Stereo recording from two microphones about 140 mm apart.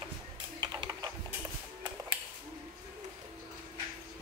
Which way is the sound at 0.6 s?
30° right (ahead or behind).